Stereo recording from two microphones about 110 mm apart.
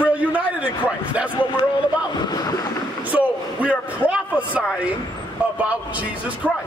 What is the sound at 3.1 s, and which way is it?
A man's voice, 15° right (ahead or behind).